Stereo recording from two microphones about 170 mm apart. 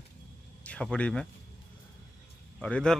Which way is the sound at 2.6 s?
5° left (ahead or behind).